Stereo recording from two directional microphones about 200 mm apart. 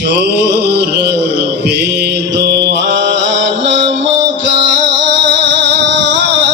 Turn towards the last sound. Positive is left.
turn(degrees=-60)  # may be behind; listen again after turning